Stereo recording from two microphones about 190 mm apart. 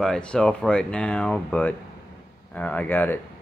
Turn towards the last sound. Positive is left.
turn(degrees=10)  # may be behind; listen again after turning